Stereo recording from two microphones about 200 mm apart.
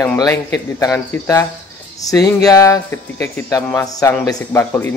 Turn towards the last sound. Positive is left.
turn(degrees=10)  # may be behind; listen again after turning